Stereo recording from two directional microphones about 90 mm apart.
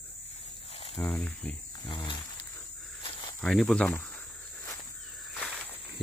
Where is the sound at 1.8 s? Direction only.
60° left (ahead or behind).